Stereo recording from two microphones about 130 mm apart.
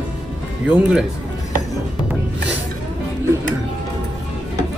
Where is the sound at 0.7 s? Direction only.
10° right (ahead or behind).